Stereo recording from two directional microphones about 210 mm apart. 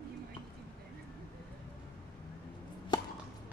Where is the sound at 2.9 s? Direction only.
20° left (ahead or behind).